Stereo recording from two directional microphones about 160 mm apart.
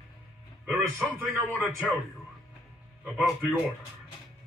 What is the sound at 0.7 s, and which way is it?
A man's voice, 10° right (ahead or behind).